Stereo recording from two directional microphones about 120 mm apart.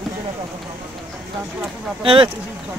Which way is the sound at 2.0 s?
45° right (ahead or behind).